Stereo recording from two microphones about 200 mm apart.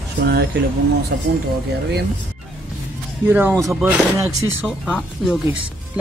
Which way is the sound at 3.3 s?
10° right (ahead or behind).